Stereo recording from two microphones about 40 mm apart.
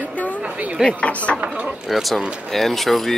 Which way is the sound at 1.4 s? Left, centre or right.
Right.